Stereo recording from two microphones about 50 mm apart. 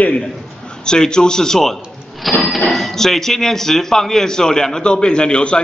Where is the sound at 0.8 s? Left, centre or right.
Centre.